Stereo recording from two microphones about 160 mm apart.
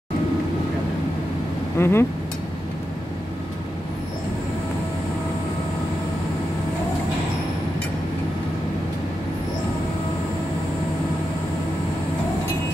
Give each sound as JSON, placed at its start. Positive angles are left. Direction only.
{"t": 1.8, "sound": "speech", "side_deg": 15}